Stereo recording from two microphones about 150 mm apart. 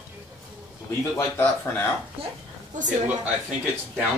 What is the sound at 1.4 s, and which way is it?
Speech, 15° left (ahead or behind).